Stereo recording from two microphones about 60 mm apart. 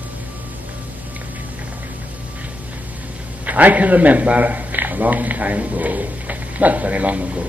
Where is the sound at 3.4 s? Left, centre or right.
Right.